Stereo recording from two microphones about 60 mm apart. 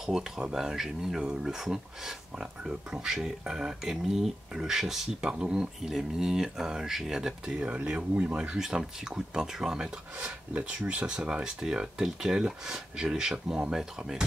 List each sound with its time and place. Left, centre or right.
0.0 s speech: centre